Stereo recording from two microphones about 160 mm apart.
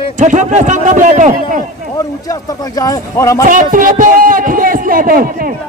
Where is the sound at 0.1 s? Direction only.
50° right (ahead or behind).